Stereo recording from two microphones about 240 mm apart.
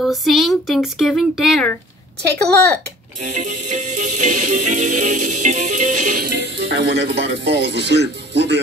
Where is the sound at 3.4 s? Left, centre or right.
Right.